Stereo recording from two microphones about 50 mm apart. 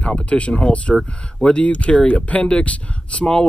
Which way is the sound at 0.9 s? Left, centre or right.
Centre.